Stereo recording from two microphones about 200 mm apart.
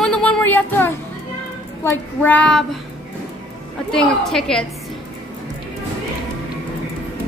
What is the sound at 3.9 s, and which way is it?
Speech, 5° left (ahead or behind).